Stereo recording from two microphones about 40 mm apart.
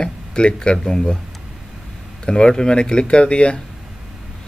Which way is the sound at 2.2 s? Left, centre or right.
Centre.